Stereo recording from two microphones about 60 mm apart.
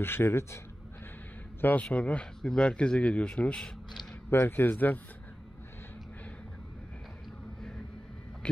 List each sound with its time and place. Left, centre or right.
0.0 s a man's voice: left
1.6 s speech: left; by 3.7 s centre
4.3 s speech: left